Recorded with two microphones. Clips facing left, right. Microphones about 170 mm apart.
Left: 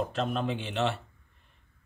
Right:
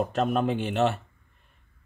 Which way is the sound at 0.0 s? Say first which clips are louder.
Right 5 dB; 50° right (ahead or behind).